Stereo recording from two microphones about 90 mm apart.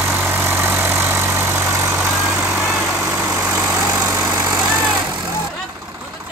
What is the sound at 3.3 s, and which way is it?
Vehicle, 40° right (ahead or behind).